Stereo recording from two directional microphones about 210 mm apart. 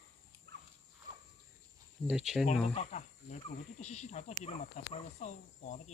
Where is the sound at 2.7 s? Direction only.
35° left (ahead or behind).